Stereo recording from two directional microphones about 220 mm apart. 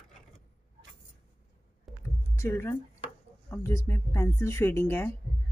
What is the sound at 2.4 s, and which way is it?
Speech, 10° left (ahead or behind).